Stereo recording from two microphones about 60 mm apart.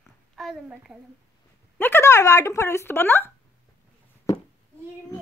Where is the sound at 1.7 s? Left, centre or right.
Left.